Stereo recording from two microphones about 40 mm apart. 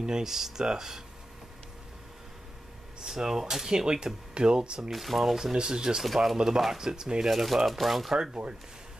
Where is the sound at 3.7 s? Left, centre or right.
Right.